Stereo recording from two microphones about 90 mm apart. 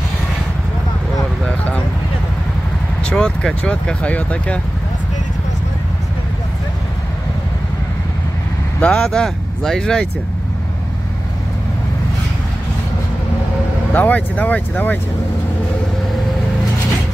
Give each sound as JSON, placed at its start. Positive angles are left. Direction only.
{"t": 3.0, "sound": "speech", "side_deg": 10}
{"t": 8.8, "sound": "speech", "side_deg": 15}
{"t": 13.9, "sound": "speech", "side_deg": 15}